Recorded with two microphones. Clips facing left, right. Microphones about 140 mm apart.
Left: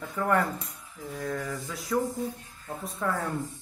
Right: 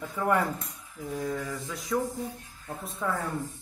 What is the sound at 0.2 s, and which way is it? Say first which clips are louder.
Mantra: even; 5° right (ahead or behind).